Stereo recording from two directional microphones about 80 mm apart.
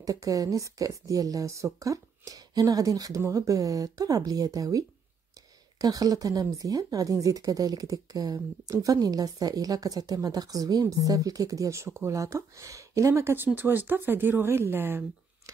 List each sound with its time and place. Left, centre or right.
0.0 s speech: right